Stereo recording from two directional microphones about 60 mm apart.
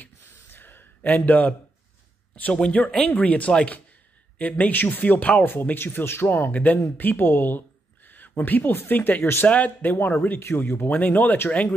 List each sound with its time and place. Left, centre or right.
0.0 s a sound: left
1.1 s speech: left
2.5 s speech: centre